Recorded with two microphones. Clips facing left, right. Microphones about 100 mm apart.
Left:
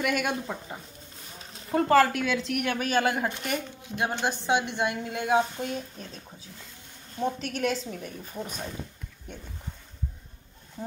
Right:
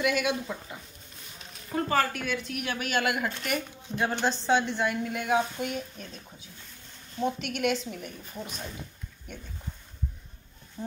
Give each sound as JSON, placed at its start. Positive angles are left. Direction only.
{"t": 0.0, "sound": "speech", "side_deg": 50}
{"t": 1.7, "sound": "a woman's voice", "side_deg": 90}
{"t": 2.6, "sound": "speech", "side_deg": 40}
{"t": 3.3, "sound": "a woman's voice", "side_deg": 15}
{"t": 7.2, "sound": "speech", "side_deg": 30}